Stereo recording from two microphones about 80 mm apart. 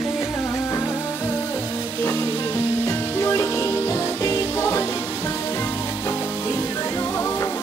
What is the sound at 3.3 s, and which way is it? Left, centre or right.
Music, left.